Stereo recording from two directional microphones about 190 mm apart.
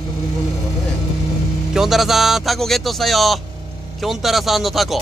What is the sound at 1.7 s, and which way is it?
Speech, centre (ahead or behind).